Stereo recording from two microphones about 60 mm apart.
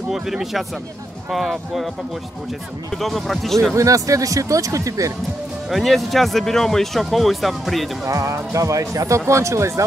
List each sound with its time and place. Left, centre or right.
0.1 s speech: centre
3.0 s speech: centre
3.7 s speech: right
5.7 s speech: centre
8.0 s speech: right
9.2 s speech: right